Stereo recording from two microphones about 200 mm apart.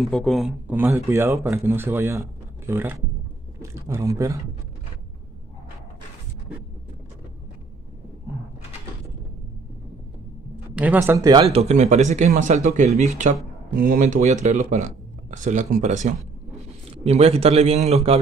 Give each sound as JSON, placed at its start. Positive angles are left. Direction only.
{"t": 0.0, "sound": "speech", "side_deg": 0}
{"t": 10.7, "sound": "speech", "side_deg": -5}
{"t": 11.5, "sound": "speech", "side_deg": -35}